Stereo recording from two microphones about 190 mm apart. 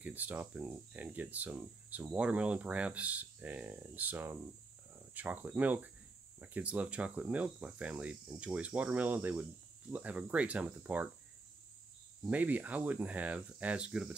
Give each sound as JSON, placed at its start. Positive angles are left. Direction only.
{"t": 0.0, "sound": "speech", "side_deg": -10}
{"t": 12.3, "sound": "speech", "side_deg": -10}